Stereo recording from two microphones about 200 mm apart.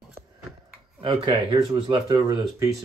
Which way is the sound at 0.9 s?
25° right (ahead or behind).